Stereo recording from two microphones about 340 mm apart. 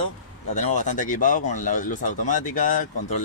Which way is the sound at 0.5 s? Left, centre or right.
Left.